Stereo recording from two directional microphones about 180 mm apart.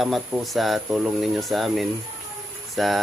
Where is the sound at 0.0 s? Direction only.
Centre (ahead or behind).